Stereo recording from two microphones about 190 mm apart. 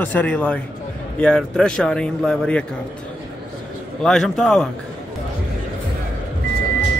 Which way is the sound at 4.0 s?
5° left (ahead or behind).